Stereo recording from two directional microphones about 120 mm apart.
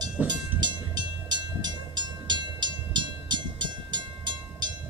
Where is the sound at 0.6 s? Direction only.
35° right (ahead or behind).